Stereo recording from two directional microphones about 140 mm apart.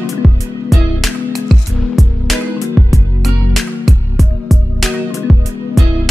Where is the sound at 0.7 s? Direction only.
Centre (ahead or behind).